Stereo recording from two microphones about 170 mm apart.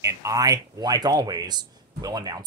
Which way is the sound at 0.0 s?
20° right (ahead or behind).